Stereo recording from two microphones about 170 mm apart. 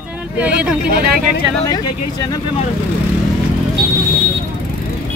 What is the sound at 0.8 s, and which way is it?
Speech, 65° right (ahead or behind).